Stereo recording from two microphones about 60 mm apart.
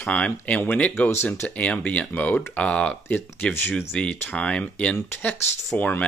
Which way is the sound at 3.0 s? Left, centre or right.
Left.